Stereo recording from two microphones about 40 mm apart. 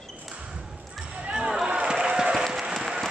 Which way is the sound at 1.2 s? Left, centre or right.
Right.